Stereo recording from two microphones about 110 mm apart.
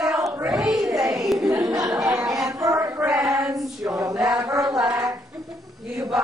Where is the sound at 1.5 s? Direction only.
25° right (ahead or behind).